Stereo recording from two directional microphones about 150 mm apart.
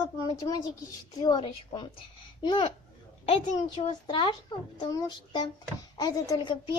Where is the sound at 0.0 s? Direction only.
25° left (ahead or behind).